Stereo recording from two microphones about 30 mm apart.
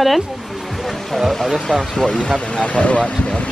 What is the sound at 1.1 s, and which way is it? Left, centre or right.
Speech, centre.